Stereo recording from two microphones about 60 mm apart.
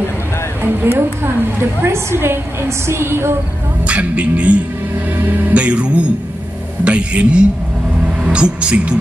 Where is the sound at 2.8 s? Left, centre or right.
Right.